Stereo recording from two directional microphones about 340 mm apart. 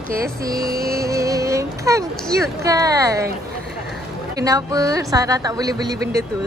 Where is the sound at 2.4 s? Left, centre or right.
Centre.